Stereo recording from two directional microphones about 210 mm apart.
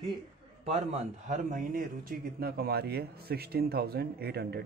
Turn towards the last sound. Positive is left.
turn(degrees=-50)  # may be behind; listen again after turning